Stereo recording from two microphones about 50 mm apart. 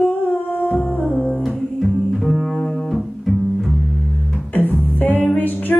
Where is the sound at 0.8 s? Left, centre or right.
Left.